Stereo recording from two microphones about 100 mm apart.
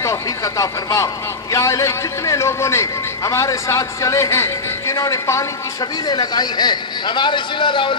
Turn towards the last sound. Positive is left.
turn(degrees=55)  # may be behind; listen again after turning